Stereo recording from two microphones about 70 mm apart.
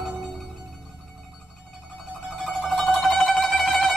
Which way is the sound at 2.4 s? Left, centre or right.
Centre.